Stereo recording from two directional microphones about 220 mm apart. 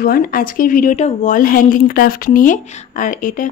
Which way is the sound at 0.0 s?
40° left (ahead or behind).